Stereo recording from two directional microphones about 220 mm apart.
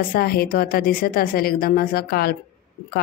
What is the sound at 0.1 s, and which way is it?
A woman's voice, 45° left (ahead or behind).